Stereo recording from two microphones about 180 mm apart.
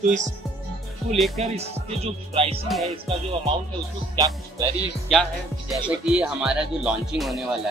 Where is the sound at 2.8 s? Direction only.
30° right (ahead or behind).